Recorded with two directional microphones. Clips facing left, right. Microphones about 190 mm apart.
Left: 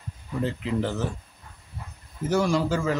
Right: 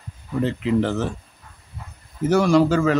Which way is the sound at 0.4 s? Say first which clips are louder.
Right 6 dB; 85° right.